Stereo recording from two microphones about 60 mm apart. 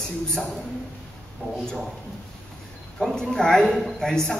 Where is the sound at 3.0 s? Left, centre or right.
Centre.